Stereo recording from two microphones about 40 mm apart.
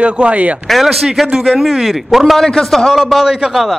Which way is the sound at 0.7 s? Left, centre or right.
Centre.